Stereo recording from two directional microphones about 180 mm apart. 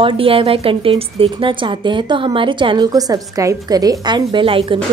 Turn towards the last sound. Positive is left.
turn(degrees=-30)  # may be behind; listen again after turning